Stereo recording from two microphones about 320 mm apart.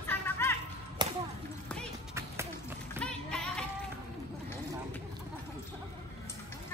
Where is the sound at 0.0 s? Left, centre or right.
Centre.